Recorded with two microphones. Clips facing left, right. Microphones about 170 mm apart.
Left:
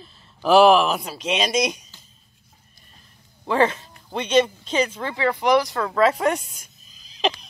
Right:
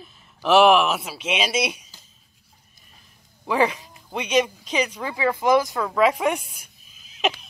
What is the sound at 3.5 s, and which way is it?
Speech, 10° right (ahead or behind).